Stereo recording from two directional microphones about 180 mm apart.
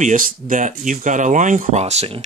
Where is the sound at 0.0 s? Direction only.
45° right (ahead or behind).